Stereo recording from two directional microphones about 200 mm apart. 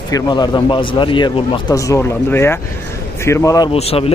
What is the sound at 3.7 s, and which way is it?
Speech, 30° left (ahead or behind).